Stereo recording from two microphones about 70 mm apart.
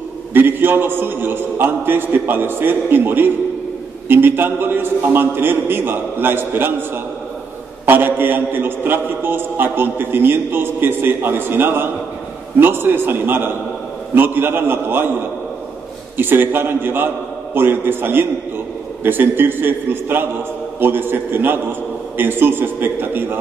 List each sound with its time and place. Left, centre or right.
0.3 s a man's voice: right
7.8 s a man's voice: right
16.2 s a man's voice: right